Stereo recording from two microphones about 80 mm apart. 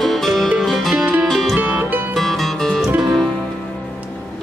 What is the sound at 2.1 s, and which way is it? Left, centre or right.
Music, centre.